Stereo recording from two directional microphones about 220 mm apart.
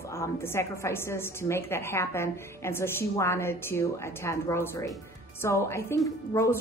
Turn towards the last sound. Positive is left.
turn(degrees=15)  # may be behind; listen again after turning